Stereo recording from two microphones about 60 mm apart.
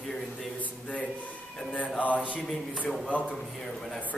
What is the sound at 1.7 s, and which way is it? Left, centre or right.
Speech, left.